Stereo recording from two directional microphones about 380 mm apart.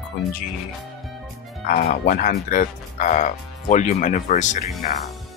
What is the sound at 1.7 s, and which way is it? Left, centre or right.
Speech, left.